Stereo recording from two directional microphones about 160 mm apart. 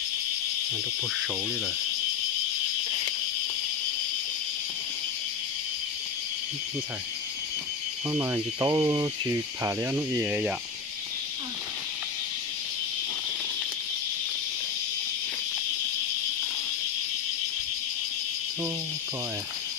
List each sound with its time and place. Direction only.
8.1 s speech: 15° right (ahead or behind)